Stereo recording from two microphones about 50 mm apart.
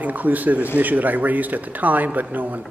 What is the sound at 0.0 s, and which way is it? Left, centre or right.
A man's voice, right.